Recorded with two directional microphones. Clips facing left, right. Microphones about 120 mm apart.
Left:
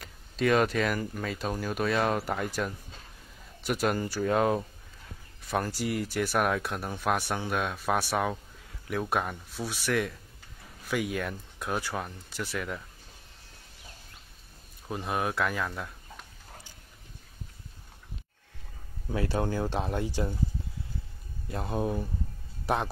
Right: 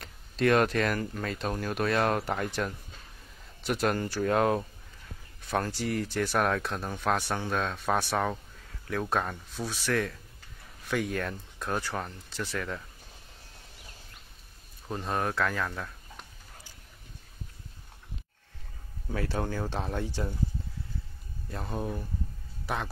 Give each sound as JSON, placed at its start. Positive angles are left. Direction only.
{"t": 0.0, "sound": "speech", "side_deg": 0}
{"t": 14.9, "sound": "speech", "side_deg": 10}
{"t": 19.0, "sound": "speech", "side_deg": 5}
{"t": 21.5, "sound": "speech", "side_deg": 15}